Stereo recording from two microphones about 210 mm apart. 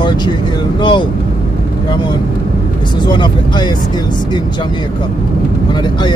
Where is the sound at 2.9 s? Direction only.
20° left (ahead or behind).